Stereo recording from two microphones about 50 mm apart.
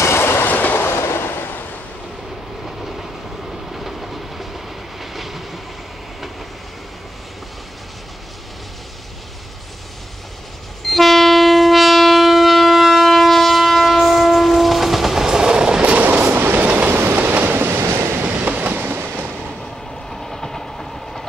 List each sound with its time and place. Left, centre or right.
0.0 s train: left
0.5 s train: left
0.7 s a sound: left
3.7 s train: centre
10.9 s train: centre; by 17.8 s right
17.8 s train: right
18.2 s train: right
18.7 s train: right
20.1 s train: centre